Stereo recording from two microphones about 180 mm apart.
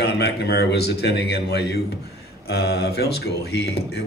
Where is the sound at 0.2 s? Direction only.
65° left (ahead or behind).